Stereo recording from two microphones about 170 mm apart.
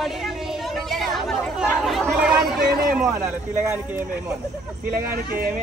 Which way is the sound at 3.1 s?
15° right (ahead or behind).